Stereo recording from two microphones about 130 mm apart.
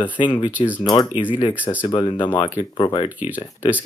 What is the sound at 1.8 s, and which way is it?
Speech, 40° left (ahead or behind).